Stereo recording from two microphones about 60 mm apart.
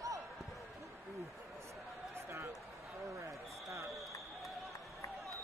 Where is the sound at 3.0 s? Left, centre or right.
Right.